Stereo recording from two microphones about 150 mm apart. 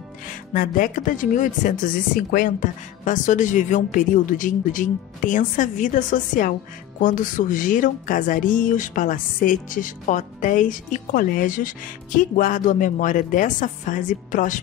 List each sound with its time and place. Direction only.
0.5 s speech: 65° left (ahead or behind)